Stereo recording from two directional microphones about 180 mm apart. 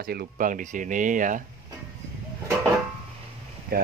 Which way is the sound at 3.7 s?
55° right (ahead or behind).